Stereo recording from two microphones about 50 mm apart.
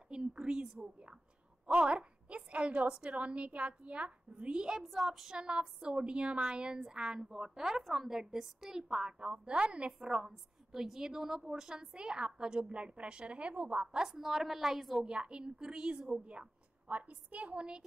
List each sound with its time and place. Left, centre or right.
0.1 s a woman's voice: centre
4.8 s speech: centre
5.4 s a woman's voice: centre
9.9 s a woman's voice: centre
14.0 s a woman's voice: centre
15.0 s a woman's voice: centre
16.8 s a woman's voice: right